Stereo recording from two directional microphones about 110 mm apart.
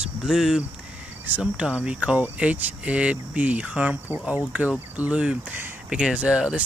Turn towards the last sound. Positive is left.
turn(degrees=-10)  # may be behind; listen again after turning